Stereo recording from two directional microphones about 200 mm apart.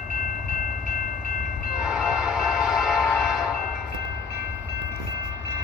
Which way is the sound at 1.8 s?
5° right (ahead or behind).